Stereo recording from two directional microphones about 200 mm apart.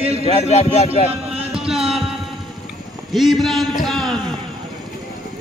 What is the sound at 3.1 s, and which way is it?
A man's voice, centre (ahead or behind).